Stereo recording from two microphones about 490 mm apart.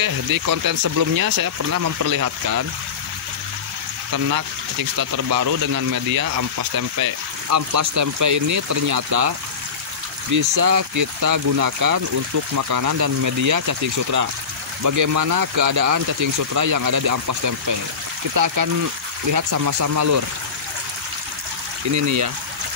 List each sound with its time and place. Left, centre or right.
0.0 s speech: right
4.1 s speech: right
10.3 s speech: right
21.9 s speech: right